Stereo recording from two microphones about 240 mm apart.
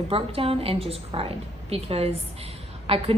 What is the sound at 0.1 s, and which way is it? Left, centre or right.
A woman's voice, right.